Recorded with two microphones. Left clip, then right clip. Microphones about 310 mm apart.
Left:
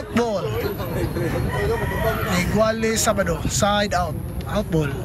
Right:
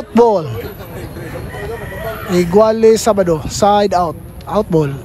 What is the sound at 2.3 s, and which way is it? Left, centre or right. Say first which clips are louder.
A man's voice: right 13 dB; centre.